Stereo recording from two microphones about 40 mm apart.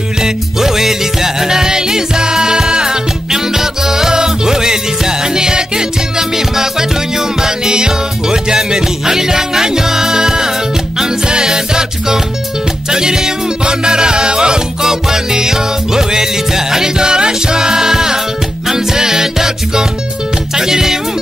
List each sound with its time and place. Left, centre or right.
0.2 s music: centre